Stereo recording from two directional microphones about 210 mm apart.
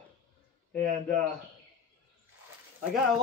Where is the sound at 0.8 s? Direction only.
35° right (ahead or behind).